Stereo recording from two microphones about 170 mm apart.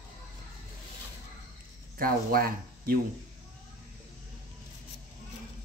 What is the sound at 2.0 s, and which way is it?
Speech, 60° right (ahead or behind).